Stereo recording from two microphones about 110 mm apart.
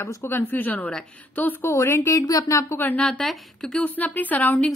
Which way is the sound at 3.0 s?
5° left (ahead or behind).